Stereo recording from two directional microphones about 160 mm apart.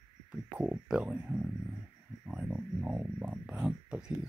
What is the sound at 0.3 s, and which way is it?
Speech, 5° right (ahead or behind).